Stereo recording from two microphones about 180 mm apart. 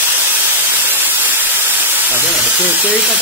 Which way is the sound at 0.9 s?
10° right (ahead or behind).